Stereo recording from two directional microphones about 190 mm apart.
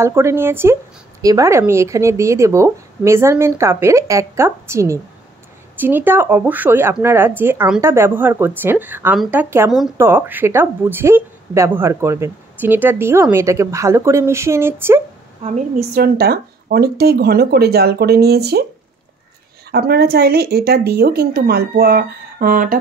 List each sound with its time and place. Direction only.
0.0 s speech: 15° right (ahead or behind)
9.9 s speech: 10° right (ahead or behind)
15.9 s speech: 55° right (ahead or behind)
19.7 s speech: 55° right (ahead or behind)